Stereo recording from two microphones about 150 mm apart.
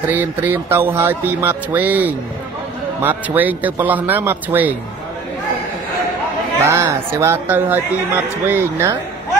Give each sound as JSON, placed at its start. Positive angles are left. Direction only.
{"t": 0.0, "sound": "music", "side_deg": -10}
{"t": 6.6, "sound": "music", "side_deg": -20}